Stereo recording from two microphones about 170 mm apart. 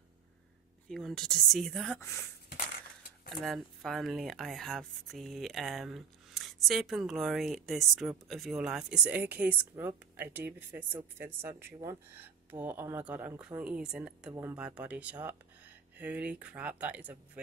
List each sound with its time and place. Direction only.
0.8 s speech: 5° left (ahead or behind)
2.0 s speech: 15° left (ahead or behind)
3.3 s speech: centre (ahead or behind)